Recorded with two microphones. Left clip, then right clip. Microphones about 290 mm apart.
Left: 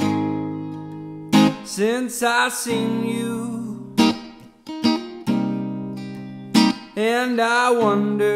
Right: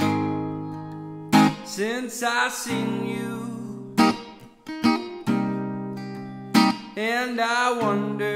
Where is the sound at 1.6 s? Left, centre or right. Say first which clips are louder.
Left 6 dB; centre.